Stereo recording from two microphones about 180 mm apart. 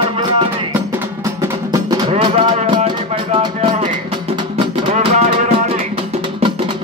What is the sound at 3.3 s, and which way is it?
Music, 30° right (ahead or behind).